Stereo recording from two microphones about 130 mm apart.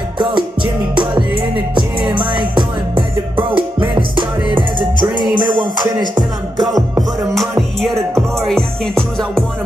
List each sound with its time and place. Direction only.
0.2 s music: 40° right (ahead or behind)
6.7 s music: centre (ahead or behind)